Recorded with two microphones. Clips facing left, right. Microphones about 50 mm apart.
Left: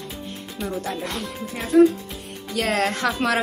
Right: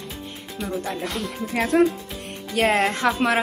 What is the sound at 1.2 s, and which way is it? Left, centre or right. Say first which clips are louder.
Speech: right 5 dB; right.